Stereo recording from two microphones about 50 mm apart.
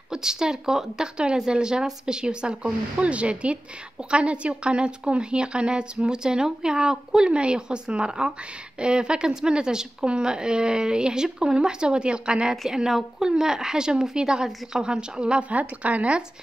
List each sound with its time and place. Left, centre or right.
0.1 s a woman's voice: centre
12.6 s a woman's voice: centre; by 16.2 s right